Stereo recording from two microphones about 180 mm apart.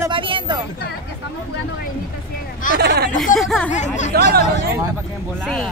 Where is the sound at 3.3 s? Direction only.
Centre (ahead or behind).